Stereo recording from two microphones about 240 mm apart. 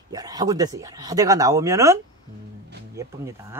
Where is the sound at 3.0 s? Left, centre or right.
Centre.